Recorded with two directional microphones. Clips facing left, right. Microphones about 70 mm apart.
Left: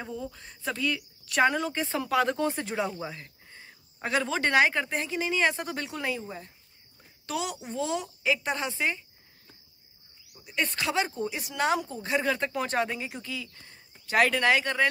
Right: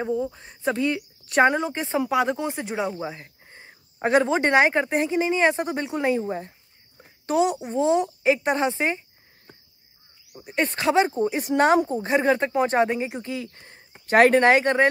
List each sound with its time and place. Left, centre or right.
0.0 s speech: right
7.0 s a sound: right
7.7 s speech: right
10.3 s speech: right